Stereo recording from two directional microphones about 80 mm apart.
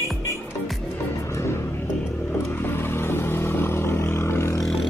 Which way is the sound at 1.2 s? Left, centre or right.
Left.